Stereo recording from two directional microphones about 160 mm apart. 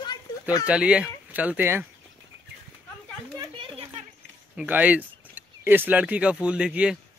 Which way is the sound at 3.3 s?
30° right (ahead or behind).